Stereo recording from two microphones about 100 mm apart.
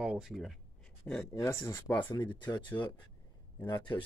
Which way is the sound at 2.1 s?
50° left (ahead or behind).